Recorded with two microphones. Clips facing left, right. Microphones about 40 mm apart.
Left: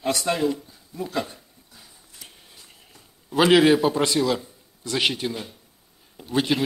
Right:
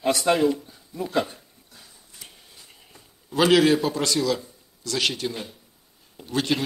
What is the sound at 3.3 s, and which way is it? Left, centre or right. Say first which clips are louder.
A man's voice: left 2 dB; centre.